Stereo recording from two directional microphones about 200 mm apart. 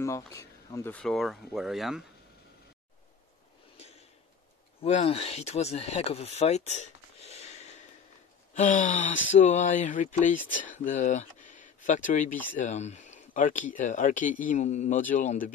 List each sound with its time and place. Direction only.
0.0 s speech: 15° left (ahead or behind); by 2.0 s centre (ahead or behind)
3.7 s a sound: 30° left (ahead or behind)
4.8 s speech: 30° left (ahead or behind)